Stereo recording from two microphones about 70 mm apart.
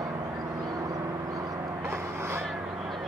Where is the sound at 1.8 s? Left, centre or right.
Right.